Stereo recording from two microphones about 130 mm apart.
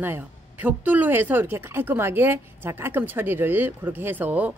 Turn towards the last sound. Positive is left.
turn(degrees=-15)  # may be behind; listen again after turning